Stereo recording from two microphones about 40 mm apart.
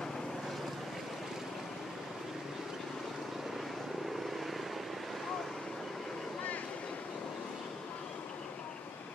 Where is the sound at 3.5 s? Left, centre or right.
Centre.